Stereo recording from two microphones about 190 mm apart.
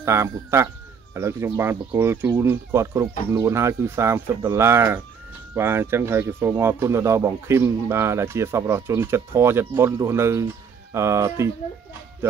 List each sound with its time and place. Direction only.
0.0 s speech: 15° right (ahead or behind)